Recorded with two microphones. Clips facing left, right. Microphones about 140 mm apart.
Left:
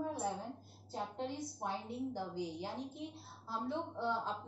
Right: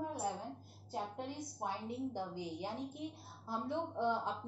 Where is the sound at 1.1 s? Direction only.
15° right (ahead or behind).